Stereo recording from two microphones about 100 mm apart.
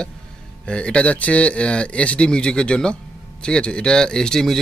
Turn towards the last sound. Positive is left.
turn(degrees=5)  # may be behind; listen again after turning